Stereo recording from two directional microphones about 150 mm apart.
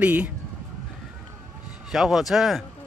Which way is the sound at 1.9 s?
Centre (ahead or behind).